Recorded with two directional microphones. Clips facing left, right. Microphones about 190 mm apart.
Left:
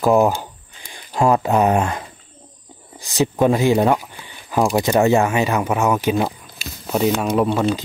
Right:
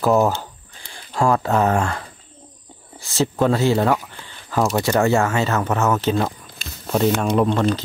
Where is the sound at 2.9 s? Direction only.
15° left (ahead or behind).